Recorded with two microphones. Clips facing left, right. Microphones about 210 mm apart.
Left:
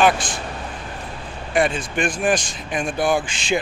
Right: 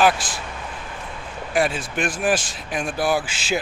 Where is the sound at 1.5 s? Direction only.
Centre (ahead or behind).